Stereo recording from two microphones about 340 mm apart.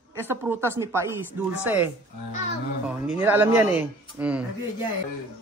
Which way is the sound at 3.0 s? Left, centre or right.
Centre.